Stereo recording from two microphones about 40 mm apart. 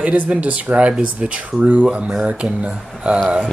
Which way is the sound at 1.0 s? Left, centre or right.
Right.